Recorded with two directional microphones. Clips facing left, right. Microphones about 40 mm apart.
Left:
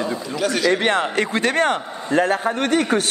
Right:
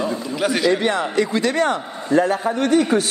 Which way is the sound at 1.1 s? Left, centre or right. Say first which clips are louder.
Right 1 dB; left.